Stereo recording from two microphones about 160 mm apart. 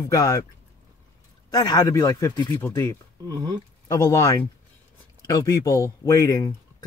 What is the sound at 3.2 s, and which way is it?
Speech, 25° right (ahead or behind).